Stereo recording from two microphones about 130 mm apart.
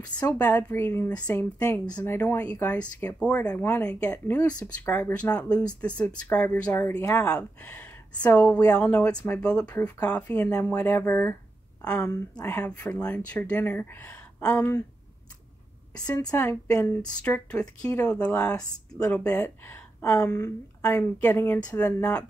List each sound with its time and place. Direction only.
0.0 s a woman's voice: 10° left (ahead or behind)
16.3 s speech: 10° left (ahead or behind)
20.2 s a woman's voice: 25° left (ahead or behind)